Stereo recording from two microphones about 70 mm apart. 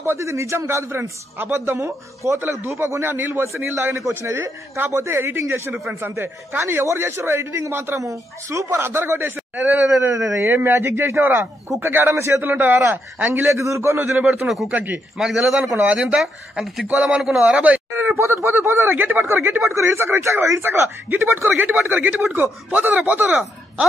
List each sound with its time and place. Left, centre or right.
0.0 s a man's voice: right
5.7 s a man's voice: right
8.0 s a man's voice: right
9.9 s speech: right
10.4 s a man's voice: right
13.5 s a man's voice: right
15.1 s speech: centre
16.8 s speech: centre
18.1 s a man's voice: right
19.7 s a man's voice: right